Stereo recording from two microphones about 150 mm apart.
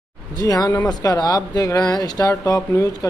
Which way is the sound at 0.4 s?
25° left (ahead or behind).